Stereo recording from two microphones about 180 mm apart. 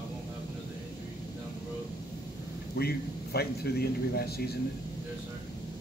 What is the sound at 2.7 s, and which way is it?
A man's voice, 60° left (ahead or behind).